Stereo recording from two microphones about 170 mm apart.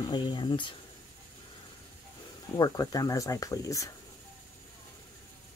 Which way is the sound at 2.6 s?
20° left (ahead or behind).